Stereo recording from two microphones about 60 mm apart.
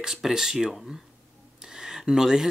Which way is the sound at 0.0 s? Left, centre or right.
Centre.